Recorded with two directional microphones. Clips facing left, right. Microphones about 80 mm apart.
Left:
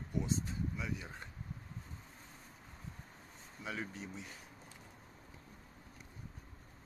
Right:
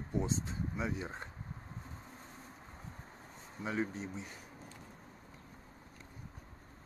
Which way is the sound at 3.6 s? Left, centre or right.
Right.